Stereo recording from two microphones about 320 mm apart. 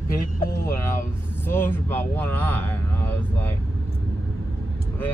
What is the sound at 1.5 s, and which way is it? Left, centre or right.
Speech, centre.